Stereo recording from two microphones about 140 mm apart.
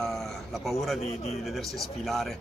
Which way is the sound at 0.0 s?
Centre (ahead or behind).